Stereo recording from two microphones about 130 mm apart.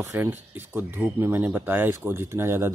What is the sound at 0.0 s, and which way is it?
Speech, 20° right (ahead or behind).